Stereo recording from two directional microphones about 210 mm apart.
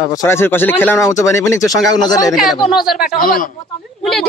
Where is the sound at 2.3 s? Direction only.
Centre (ahead or behind).